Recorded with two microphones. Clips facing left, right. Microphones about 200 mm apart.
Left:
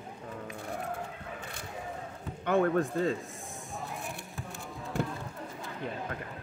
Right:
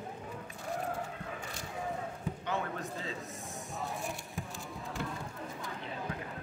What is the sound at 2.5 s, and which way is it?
Speech, 55° left (ahead or behind).